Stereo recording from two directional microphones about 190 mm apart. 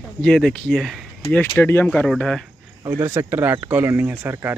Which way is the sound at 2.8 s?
15° right (ahead or behind).